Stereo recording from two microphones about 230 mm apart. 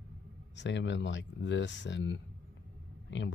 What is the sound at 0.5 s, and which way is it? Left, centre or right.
Speech, left.